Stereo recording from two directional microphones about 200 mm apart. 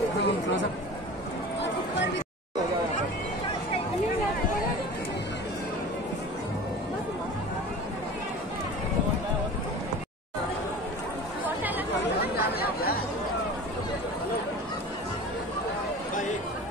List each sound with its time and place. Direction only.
0.2 s chatter: 65° left (ahead or behind)
12.4 s chatter: 50° left (ahead or behind)